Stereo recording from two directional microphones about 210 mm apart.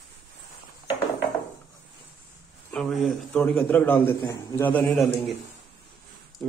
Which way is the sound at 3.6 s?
10° left (ahead or behind).